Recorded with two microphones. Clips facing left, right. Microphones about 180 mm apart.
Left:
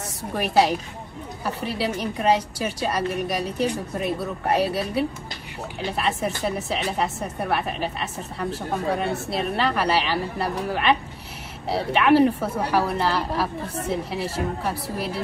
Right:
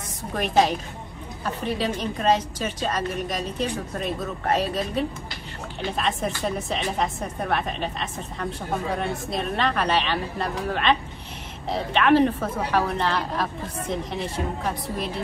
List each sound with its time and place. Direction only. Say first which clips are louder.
0.4 s a woman's voice: left 1 dB; 10° left (ahead or behind)